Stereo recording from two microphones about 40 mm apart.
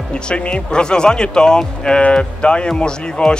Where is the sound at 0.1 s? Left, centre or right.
Left.